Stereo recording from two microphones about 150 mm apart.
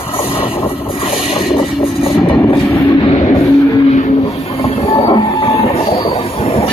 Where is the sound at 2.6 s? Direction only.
20° left (ahead or behind).